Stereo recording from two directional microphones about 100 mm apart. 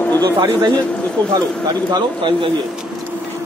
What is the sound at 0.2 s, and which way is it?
Speech, 45° right (ahead or behind).